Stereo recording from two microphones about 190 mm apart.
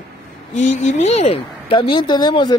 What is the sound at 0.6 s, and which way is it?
Speech, 40° left (ahead or behind).